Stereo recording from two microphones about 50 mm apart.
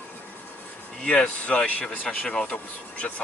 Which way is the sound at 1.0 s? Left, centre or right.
Left.